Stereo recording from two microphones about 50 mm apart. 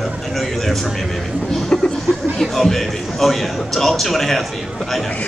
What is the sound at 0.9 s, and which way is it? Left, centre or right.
Speech, centre.